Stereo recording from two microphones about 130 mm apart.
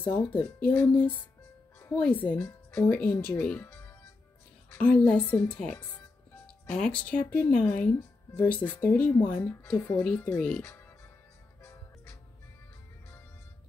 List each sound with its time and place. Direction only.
0.0 s speech: 15° left (ahead or behind)
6.4 s music: 10° left (ahead or behind)
7.0 s speech: 10° left (ahead or behind)
11.6 s music: 20° left (ahead or behind)